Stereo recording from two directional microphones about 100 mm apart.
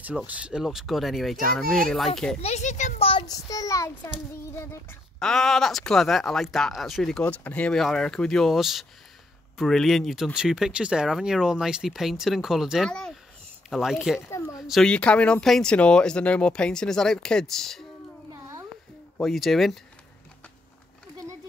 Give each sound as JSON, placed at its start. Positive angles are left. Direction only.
{"t": 0.3, "sound": "speech", "side_deg": -10}
{"t": 3.0, "sound": "child singing", "side_deg": 70}
{"t": 3.3, "sound": "a child's voice", "side_deg": 35}
{"t": 5.2, "sound": "speech", "side_deg": 5}
{"t": 7.2, "sound": "speech", "side_deg": 15}
{"t": 14.7, "sound": "speech", "side_deg": 5}
{"t": 18.3, "sound": "a sound", "side_deg": -35}
{"t": 19.2, "sound": "speech", "side_deg": 0}